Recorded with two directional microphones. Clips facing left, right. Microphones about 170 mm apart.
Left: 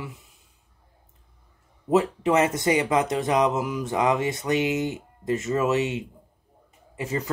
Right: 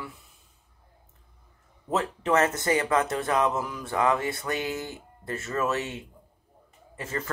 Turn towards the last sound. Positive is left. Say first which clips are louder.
# left 5 dB
turn(degrees=15)  # may be behind; listen again after turning